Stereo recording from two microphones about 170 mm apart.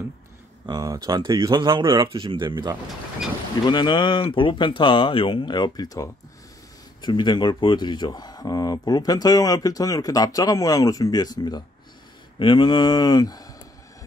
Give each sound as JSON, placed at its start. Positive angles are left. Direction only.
{"t": 0.7, "sound": "speech", "side_deg": -25}
{"t": 3.6, "sound": "speech", "side_deg": 25}